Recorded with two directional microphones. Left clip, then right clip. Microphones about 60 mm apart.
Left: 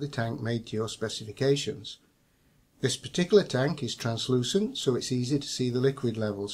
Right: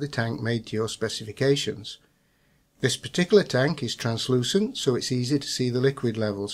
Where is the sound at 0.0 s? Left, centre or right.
Right.